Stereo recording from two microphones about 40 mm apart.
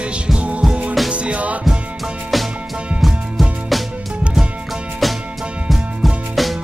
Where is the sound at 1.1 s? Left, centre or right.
Right.